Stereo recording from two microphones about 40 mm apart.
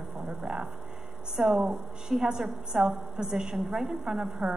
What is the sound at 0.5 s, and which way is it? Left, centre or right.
A woman's voice, centre.